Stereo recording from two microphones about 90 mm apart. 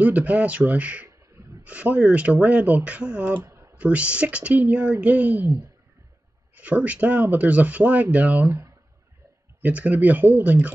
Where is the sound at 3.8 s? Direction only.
15° right (ahead or behind).